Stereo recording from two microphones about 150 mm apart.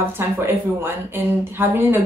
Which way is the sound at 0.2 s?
15° right (ahead or behind).